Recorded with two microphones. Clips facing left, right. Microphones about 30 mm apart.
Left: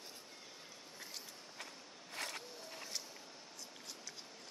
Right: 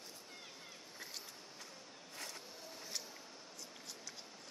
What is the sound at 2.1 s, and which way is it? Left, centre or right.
Vehicle, left.